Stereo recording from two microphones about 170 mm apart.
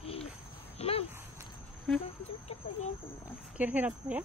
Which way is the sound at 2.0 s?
35° left (ahead or behind).